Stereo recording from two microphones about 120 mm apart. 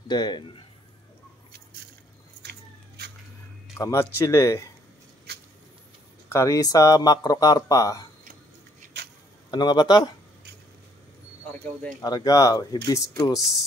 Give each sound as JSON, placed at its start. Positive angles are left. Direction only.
{"t": 0.1, "sound": "speech", "side_deg": 35}
{"t": 3.7, "sound": "speech", "side_deg": 25}
{"t": 6.2, "sound": "speech", "side_deg": 25}
{"t": 9.5, "sound": "speech", "side_deg": 35}
{"t": 12.3, "sound": "speech", "side_deg": 30}